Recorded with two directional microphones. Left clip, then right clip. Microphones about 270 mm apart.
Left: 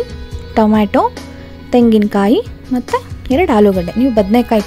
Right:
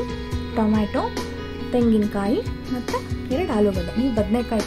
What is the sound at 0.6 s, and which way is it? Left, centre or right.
A woman's voice, left.